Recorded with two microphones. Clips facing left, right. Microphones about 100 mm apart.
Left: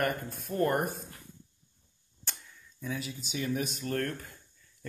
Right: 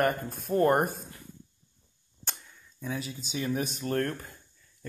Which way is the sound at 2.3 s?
30° right (ahead or behind).